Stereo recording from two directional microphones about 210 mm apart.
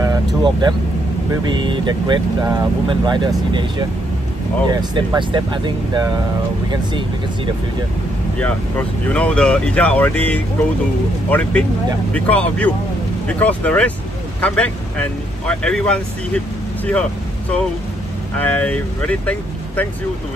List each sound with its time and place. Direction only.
0.0 s speech: 20° right (ahead or behind)
8.4 s speech: 5° left (ahead or behind)
18.3 s speech: 5° left (ahead or behind)